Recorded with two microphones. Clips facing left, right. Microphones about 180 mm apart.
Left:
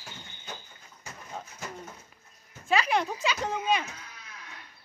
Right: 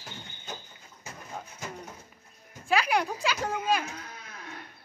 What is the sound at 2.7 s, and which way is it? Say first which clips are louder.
Speech: even; 5° right (ahead or behind).